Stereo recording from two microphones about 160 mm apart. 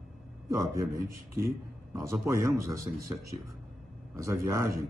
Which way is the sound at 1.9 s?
20° right (ahead or behind).